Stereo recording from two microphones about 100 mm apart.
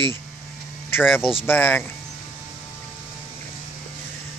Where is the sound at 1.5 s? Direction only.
20° left (ahead or behind).